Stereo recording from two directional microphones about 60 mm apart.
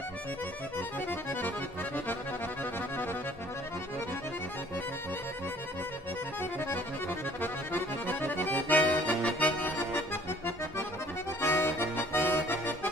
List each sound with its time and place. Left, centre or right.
0.7 s accordion: left
2.6 s accordion: left
6.6 s accordion: left